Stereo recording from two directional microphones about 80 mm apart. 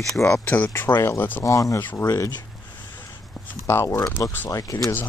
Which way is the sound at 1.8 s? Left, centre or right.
Left.